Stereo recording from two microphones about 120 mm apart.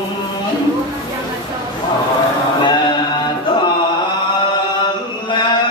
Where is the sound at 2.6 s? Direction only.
40° left (ahead or behind).